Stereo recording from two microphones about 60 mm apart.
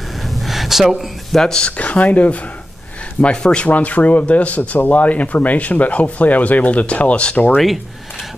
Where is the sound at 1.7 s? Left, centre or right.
Left.